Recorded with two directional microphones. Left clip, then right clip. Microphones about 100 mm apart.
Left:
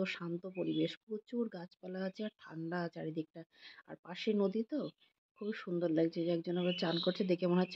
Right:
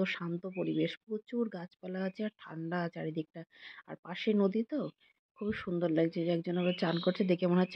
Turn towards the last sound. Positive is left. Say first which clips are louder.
# right 3 dB
turn(degrees=-25)  # may be behind; listen again after turning